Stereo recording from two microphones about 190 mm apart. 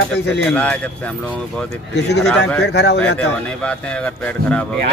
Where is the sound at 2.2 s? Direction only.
60° left (ahead or behind).